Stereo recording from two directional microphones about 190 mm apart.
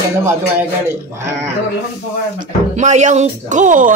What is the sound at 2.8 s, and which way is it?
A woman's voice, 40° right (ahead or behind).